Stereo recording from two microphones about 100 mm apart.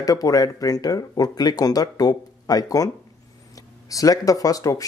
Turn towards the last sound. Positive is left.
turn(degrees=35)  # may be behind; listen again after turning